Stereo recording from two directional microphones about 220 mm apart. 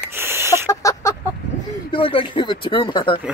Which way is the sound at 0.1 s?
10° right (ahead or behind).